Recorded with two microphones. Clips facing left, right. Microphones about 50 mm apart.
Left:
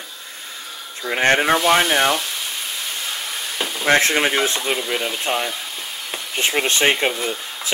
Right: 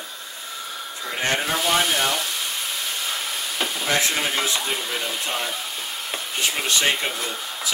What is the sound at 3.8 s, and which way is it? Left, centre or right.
Speech, left.